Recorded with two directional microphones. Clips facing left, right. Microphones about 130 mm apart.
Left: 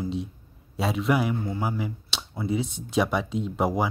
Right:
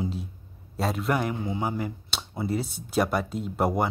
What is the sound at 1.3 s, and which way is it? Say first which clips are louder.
Speech: left 1 dB; 15° right (ahead or behind).